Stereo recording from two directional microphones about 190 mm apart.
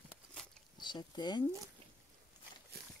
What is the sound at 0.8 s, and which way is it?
Speech, 25° left (ahead or behind).